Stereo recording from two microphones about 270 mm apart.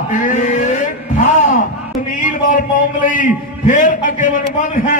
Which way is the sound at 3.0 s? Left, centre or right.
Left.